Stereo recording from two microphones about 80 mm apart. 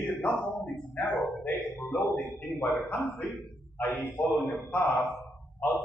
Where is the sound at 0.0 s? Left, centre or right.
Left.